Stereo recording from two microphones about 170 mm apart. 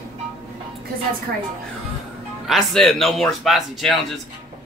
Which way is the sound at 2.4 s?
Centre (ahead or behind).